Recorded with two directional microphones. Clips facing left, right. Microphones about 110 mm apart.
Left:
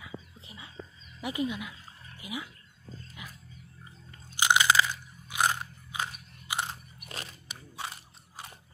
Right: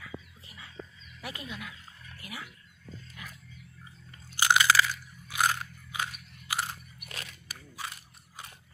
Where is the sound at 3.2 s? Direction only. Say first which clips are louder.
Even; 15° left (ahead or behind).